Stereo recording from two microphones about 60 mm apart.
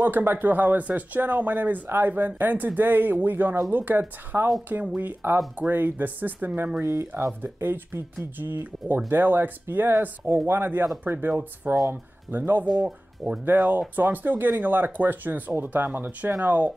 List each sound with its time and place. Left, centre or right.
0.1 s speech: right
6.8 s speech: right
7.4 s speech: right
13.2 s speech: centre
13.6 s speech: right